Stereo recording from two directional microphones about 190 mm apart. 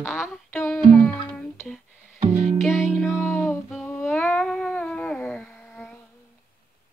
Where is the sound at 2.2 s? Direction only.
25° right (ahead or behind).